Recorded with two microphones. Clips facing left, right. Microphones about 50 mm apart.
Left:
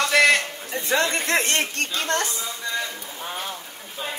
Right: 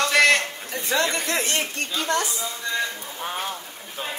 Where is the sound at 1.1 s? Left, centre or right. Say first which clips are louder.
Left 2 dB; left.